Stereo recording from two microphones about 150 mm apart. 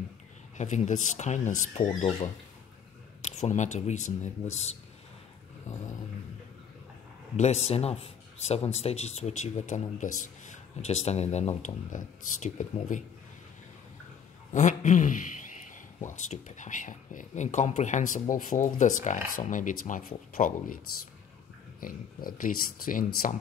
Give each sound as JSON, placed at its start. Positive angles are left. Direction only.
{"t": 0.6, "sound": "a man's voice", "side_deg": 50}
{"t": 7.3, "sound": "a man's voice", "side_deg": 45}
{"t": 14.5, "sound": "speech", "side_deg": 55}